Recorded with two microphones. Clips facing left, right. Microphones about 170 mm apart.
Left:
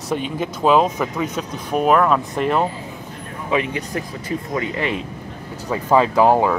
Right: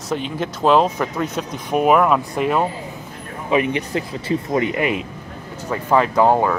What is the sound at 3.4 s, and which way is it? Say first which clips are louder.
Speech: right 3 dB; 20° right (ahead or behind).